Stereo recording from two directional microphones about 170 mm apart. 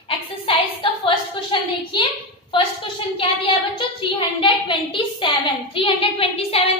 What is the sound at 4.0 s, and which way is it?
A woman's voice, 30° left (ahead or behind).